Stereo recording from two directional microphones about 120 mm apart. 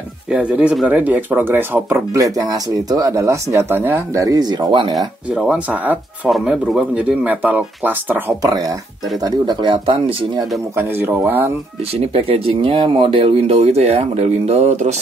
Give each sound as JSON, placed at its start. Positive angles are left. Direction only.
{"t": 0.3, "sound": "speech", "side_deg": -10}
{"t": 4.9, "sound": "speech", "side_deg": -5}
{"t": 8.4, "sound": "speech", "side_deg": -30}
{"t": 10.8, "sound": "speech", "side_deg": -15}
{"t": 11.9, "sound": "speech", "side_deg": -55}